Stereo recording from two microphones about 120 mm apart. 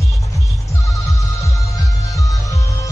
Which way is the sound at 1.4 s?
25° left (ahead or behind).